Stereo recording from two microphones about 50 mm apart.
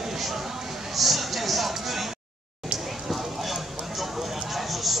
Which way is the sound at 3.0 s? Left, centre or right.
Centre.